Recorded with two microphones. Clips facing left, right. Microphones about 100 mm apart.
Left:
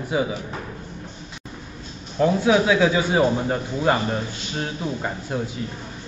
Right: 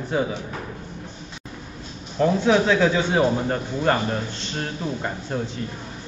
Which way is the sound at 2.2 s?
5° left (ahead or behind).